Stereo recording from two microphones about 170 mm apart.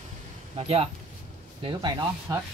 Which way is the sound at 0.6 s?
35° right (ahead or behind).